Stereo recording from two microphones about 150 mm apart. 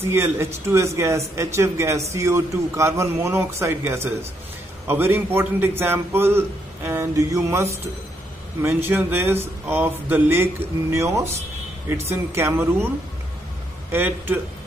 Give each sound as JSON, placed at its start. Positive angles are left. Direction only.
{"t": 0.1, "sound": "a man's voice", "side_deg": -15}
{"t": 13.9, "sound": "a man's voice", "side_deg": -15}